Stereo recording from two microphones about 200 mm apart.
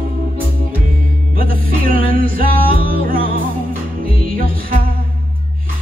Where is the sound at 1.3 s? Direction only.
45° right (ahead or behind).